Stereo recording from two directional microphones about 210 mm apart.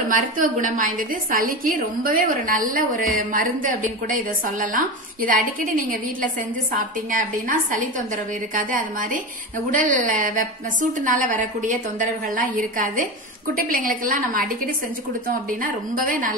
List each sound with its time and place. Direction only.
0.1 s a woman's voice: 40° right (ahead or behind)